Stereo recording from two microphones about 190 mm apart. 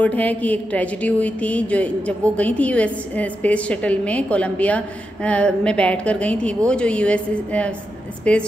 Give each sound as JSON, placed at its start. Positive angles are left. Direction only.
{"t": 0.0, "sound": "a woman's voice", "side_deg": 10}